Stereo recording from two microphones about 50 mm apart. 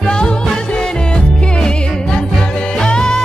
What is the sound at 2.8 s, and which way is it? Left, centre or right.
Music, centre.